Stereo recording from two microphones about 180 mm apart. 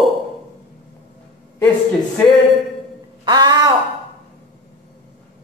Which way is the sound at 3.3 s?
25° right (ahead or behind).